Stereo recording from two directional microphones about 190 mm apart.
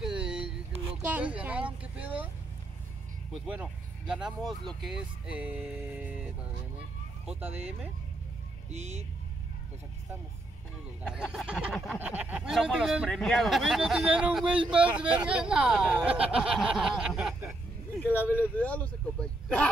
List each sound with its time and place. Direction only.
0.0 s a sound: 5° right (ahead or behind)
1.0 s speech: 10° right (ahead or behind)
3.4 s speech: 5° right (ahead or behind)
7.2 s speech: 10° right (ahead or behind)
8.7 s speech: 35° right (ahead or behind)
11.1 s speech: centre (ahead or behind)
18.0 s speech: 10° left (ahead or behind)